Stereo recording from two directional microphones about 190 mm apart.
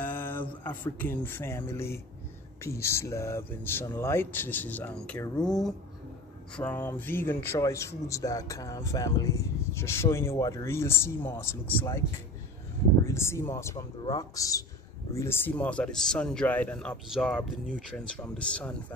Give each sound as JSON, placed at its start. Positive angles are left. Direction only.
{"t": 0.0, "sound": "speech", "side_deg": 10}
{"t": 13.0, "sound": "speech", "side_deg": 15}